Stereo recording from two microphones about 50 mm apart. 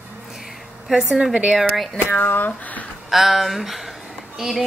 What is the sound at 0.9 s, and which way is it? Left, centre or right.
Speech, centre.